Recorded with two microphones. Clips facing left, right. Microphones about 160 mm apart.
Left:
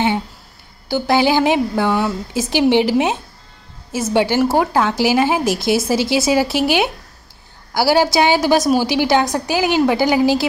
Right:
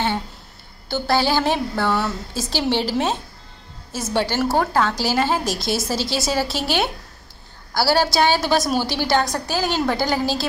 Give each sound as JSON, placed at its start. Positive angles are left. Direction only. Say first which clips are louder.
{"t": 0.8, "sound": "a woman's voice", "louder": "left 5 dB", "side_deg": 15}